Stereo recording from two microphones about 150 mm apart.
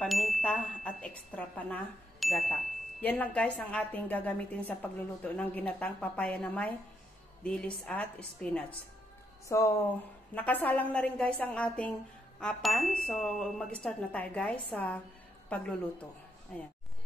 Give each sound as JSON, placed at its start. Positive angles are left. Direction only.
{"t": 0.0, "sound": "speech", "side_deg": 0}